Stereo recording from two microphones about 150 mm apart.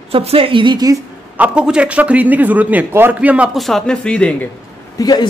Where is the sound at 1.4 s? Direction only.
5° right (ahead or behind).